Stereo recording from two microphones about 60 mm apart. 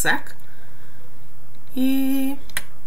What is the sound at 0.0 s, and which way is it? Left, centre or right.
Speech, centre.